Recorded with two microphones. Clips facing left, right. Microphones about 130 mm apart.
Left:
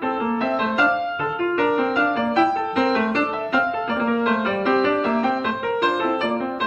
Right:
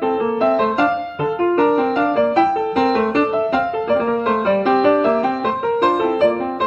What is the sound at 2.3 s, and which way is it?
Music, 35° right (ahead or behind).